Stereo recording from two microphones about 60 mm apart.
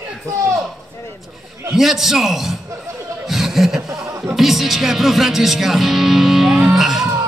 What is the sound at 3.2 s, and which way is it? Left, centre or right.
Chuckle, centre.